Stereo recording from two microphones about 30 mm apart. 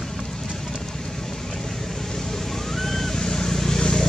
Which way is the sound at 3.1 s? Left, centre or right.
Left.